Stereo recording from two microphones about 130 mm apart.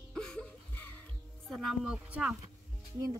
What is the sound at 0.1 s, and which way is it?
Music, 5° left (ahead or behind).